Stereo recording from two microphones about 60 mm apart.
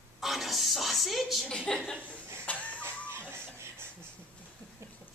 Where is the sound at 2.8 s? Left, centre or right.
Right.